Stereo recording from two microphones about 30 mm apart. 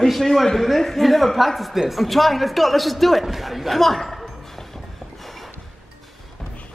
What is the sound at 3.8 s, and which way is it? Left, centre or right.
Speech, centre.